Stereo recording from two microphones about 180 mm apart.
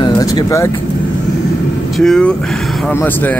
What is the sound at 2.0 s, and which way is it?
Speech, 5° left (ahead or behind).